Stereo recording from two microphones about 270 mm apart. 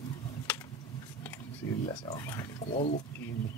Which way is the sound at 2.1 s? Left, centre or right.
Centre.